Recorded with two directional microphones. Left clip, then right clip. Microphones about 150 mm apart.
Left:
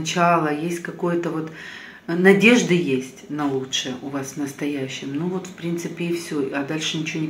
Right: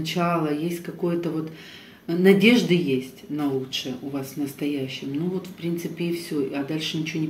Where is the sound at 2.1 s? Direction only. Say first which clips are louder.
Left 3 dB; 40° right (ahead or behind).